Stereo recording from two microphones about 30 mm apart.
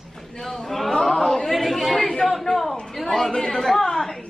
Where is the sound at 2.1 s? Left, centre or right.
Centre.